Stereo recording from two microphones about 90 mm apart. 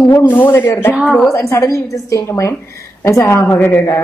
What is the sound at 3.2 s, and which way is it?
Speech, 20° left (ahead or behind).